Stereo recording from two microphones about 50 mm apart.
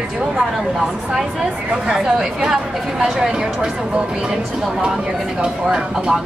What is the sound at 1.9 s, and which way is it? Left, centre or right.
Speech, centre.